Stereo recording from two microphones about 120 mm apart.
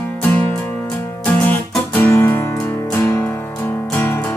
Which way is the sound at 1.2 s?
10° left (ahead or behind).